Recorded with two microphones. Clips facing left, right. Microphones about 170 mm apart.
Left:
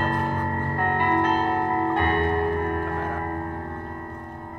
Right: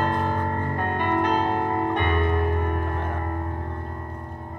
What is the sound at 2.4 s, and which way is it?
Music, 15° right (ahead or behind).